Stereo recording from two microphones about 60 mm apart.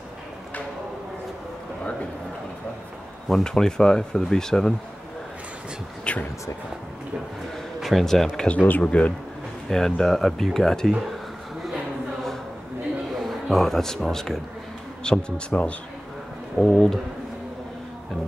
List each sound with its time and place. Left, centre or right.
3.3 s speech: centre
6.1 s speech: centre
7.8 s speech: centre
8.5 s speech: left
9.7 s speech: centre
13.1 s a sound: centre
14.1 s speech: centre
16.5 s speech: centre